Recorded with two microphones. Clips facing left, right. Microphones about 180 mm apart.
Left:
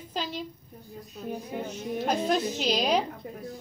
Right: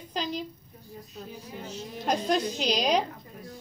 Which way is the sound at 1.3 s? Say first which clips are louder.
Left 9 dB; 60° left (ahead or behind).